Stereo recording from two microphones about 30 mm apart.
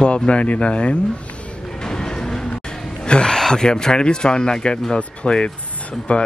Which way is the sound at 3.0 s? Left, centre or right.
Left.